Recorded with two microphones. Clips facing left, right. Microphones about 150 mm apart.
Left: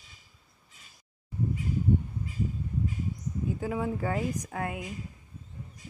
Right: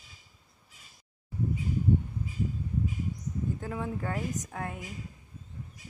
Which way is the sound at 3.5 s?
5° left (ahead or behind).